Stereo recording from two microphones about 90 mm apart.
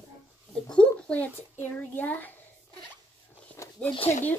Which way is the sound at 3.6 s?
35° left (ahead or behind).